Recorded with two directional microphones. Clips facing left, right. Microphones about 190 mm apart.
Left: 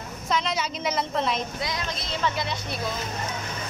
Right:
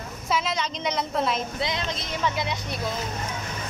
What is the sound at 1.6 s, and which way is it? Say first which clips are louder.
Speech: right 2 dB; 20° right (ahead or behind).